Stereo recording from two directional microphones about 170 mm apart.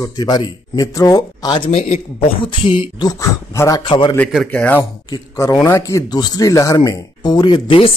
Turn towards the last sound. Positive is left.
turn(degrees=30)  # may be behind; listen again after turning